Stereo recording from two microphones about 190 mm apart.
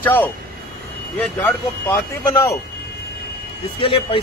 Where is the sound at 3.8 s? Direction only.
30° left (ahead or behind).